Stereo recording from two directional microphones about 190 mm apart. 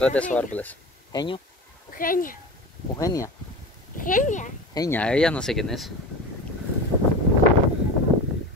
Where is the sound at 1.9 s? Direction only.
45° left (ahead or behind).